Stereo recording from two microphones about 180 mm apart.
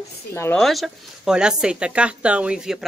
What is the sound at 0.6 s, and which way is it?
Speech, centre (ahead or behind).